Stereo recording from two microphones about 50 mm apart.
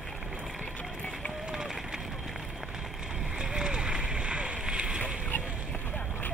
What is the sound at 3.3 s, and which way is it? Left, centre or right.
Boat, centre.